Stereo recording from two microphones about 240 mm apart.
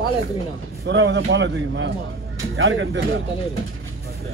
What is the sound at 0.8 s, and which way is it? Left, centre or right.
Speech, right.